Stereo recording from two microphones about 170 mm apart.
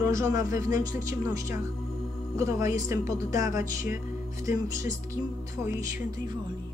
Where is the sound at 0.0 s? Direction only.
20° right (ahead or behind).